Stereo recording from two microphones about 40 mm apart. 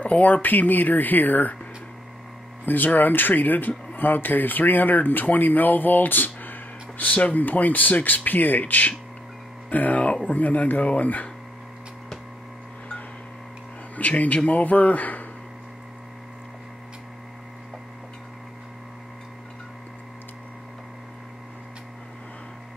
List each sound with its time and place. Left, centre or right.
0.0 s speech: left
2.6 s speech: left
13.9 s speech: left